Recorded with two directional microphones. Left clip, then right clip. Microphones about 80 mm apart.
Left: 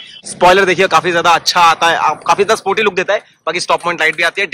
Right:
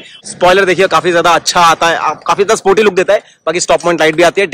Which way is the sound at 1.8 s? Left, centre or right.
Centre.